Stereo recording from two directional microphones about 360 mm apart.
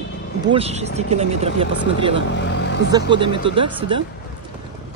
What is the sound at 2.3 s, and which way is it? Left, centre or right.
Vehicle, left.